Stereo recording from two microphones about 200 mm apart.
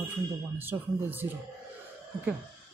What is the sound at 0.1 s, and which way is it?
Speech, 10° right (ahead or behind).